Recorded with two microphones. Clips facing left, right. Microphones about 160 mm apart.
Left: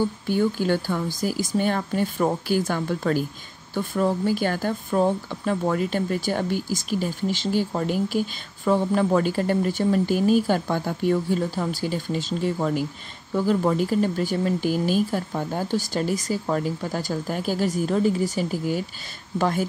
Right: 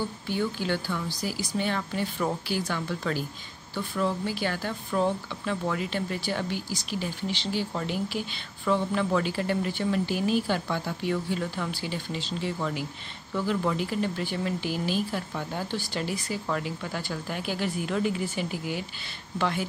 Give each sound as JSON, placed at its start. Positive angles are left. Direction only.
{"t": 0.3, "sound": "speech", "side_deg": 45}